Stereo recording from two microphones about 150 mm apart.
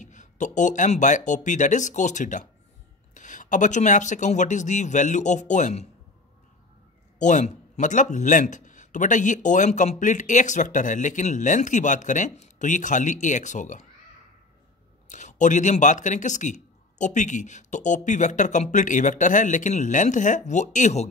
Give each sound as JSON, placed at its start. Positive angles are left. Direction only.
{"t": 0.0, "sound": "a man's voice", "side_deg": 55}
{"t": 7.2, "sound": "a man's voice", "side_deg": 55}
{"t": 15.0, "sound": "a man's voice", "side_deg": 55}